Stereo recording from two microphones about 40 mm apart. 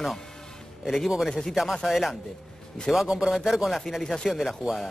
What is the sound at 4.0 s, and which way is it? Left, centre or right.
Speech, left.